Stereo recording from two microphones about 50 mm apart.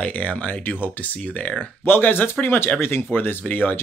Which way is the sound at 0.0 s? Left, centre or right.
Left.